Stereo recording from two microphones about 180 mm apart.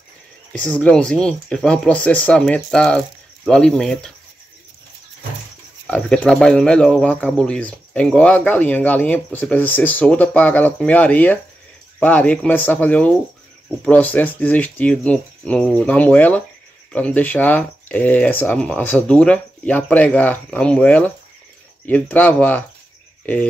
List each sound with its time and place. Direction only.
0.5 s speech: 5° left (ahead or behind)
5.9 s speech: 5° left (ahead or behind)